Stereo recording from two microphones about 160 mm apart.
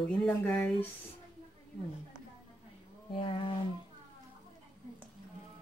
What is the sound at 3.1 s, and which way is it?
Speech, 35° left (ahead or behind).